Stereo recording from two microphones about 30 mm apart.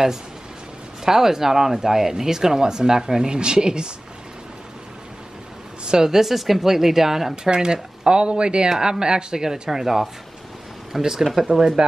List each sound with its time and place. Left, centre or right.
1.0 s speech: centre
5.9 s a woman's voice: right
6.1 s speech: centre
7.4 s speech: right
8.6 s speech: right